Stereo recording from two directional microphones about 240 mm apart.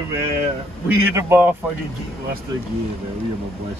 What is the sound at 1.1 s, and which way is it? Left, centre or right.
Speech, centre.